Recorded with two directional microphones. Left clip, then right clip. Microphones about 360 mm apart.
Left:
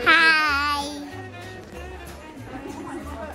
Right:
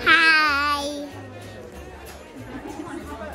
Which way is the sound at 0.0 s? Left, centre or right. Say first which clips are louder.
Right 1 dB; centre.